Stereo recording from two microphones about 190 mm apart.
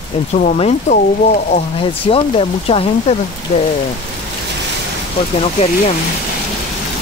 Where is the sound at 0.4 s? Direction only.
40° left (ahead or behind).